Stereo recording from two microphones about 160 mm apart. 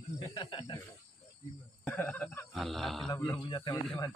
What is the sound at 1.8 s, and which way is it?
Speech, 10° left (ahead or behind).